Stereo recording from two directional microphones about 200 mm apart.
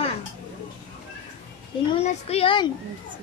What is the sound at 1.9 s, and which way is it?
Speech, 30° left (ahead or behind).